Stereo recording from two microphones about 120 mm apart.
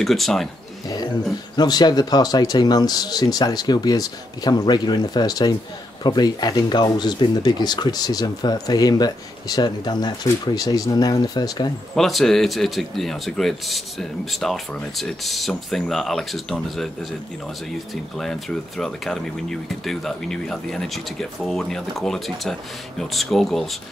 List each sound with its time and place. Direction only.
0.0 s speech: centre (ahead or behind)
1.6 s speech: 35° left (ahead or behind)
11.9 s speech: centre (ahead or behind)
18.1 s speech: 5° left (ahead or behind)